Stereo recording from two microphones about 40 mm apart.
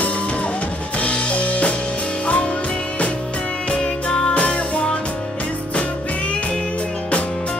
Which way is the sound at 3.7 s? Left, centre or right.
Left.